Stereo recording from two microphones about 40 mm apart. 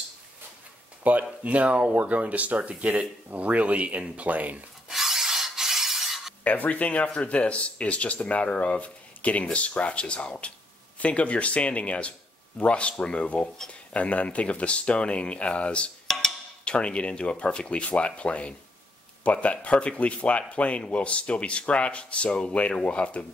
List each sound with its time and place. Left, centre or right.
1.0 s speech: right
4.8 s a sound: centre
6.4 s speech: left
16.1 s wood block: centre
16.6 s speech: left